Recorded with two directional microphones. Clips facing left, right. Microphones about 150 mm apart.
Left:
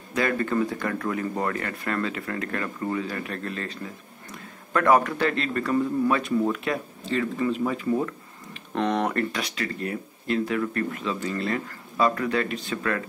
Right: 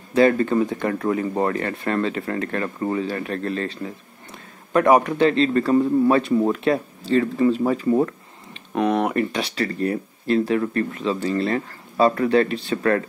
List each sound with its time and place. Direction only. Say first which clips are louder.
0.1 s speech: right 8 dB; 30° right (ahead or behind)
4.3 s a man's voice: right 4 dB; 20° right (ahead or behind); by 8.1 s 35° right (ahead or behind)
8.7 s speech: right 4 dB; 10° right (ahead or behind)
9.6 s a man's voice: right 10 dB; 35° right (ahead or behind)